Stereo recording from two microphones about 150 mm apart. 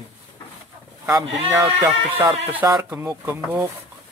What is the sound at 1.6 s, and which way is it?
Speech, 15° right (ahead or behind).